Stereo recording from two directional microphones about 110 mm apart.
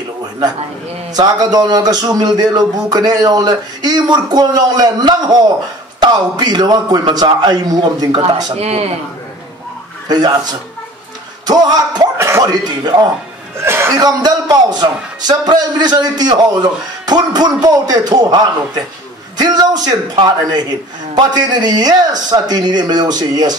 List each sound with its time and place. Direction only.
1.1 s speech: 35° right (ahead or behind)
8.5 s speech: 70° right (ahead or behind)
10.0 s speech: 40° right (ahead or behind)
11.4 s speech: 40° right (ahead or behind)
12.2 s speech: 30° right (ahead or behind)
13.6 s speech: 25° right (ahead or behind)
13.9 s speech: 35° right (ahead or behind)